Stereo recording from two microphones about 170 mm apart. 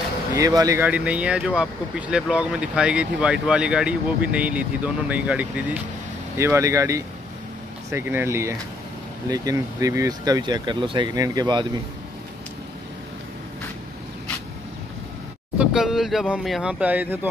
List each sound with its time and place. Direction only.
0.4 s speech: 20° right (ahead or behind)
15.5 s speech: 5° right (ahead or behind)